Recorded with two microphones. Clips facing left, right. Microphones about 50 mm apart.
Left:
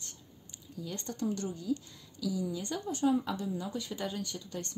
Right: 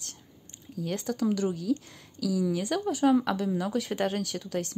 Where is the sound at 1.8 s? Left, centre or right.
Right.